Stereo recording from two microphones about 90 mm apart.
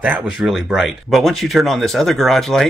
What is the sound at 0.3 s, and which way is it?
Speech, 5° right (ahead or behind).